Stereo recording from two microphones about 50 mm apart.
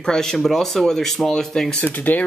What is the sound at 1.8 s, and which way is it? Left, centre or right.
Speech, left.